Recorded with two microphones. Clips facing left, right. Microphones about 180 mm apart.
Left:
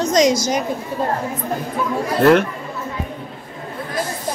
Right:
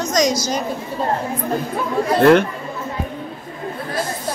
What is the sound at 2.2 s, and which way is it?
Speech, 5° left (ahead or behind).